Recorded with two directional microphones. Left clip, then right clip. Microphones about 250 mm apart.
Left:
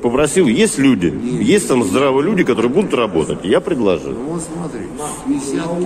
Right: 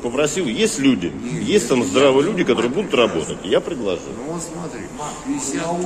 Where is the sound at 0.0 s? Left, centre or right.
Left.